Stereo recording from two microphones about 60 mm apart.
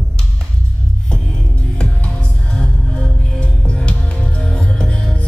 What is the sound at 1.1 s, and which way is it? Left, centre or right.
Music, centre.